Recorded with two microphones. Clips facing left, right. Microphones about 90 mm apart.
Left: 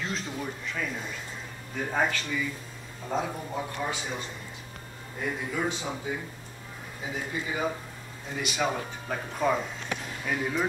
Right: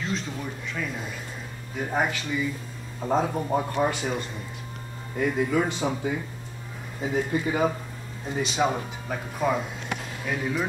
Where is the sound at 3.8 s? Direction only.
55° right (ahead or behind).